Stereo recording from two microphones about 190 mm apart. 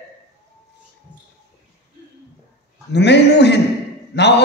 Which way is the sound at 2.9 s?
65° left (ahead or behind).